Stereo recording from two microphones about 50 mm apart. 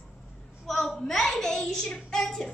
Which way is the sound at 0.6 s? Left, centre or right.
Centre.